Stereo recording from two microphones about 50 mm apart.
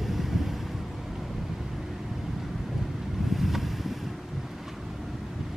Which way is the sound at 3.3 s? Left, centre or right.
Centre.